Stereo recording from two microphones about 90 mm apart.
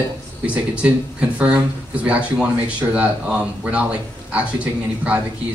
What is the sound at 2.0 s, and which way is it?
Speech, 10° right (ahead or behind).